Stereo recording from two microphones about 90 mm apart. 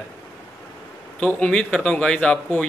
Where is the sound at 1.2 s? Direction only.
15° left (ahead or behind).